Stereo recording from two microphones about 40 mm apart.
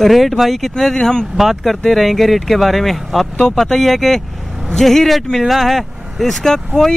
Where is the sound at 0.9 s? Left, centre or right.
Centre.